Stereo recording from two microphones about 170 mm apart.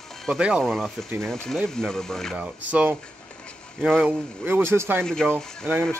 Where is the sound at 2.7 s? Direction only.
10° right (ahead or behind).